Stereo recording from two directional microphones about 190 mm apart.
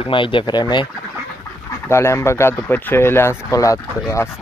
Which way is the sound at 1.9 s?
15° left (ahead or behind).